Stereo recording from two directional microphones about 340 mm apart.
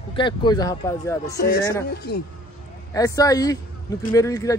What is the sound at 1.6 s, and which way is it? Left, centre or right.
Speech, centre.